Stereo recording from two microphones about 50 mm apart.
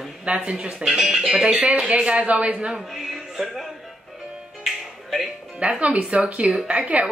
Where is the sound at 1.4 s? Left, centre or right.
Centre.